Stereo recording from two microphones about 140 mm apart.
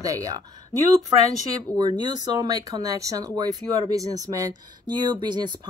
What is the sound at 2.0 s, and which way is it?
Speech, 30° right (ahead or behind).